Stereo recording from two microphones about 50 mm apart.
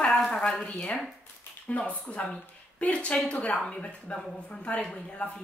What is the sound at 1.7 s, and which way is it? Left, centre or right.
Speech, left.